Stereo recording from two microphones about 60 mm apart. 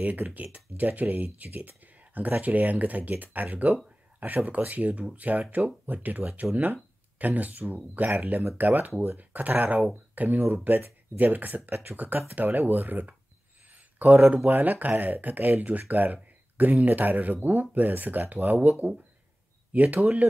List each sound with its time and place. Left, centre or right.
0.0 s speech: right
3.6 s a sound: right
4.5 s speech: right
8.5 s speech: right